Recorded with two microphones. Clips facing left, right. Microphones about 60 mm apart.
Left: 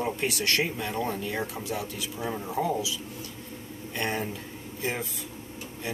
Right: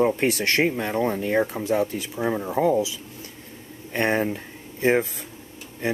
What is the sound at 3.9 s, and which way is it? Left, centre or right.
Speech, right.